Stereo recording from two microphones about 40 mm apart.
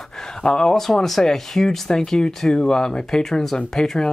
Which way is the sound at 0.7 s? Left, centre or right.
Centre.